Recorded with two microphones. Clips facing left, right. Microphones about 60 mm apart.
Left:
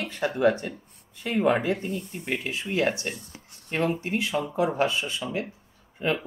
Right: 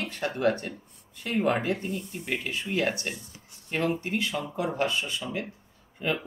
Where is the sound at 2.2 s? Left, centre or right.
Left.